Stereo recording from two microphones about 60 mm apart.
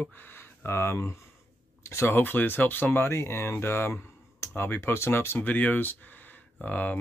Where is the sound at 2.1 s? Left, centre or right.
Left.